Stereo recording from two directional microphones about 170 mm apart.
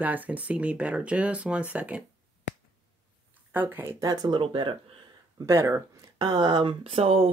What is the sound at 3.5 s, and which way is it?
Speech, 10° right (ahead or behind).